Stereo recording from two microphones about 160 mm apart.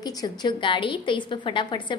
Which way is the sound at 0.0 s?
25° left (ahead or behind).